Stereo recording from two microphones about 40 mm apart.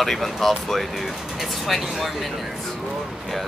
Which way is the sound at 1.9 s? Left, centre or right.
Centre.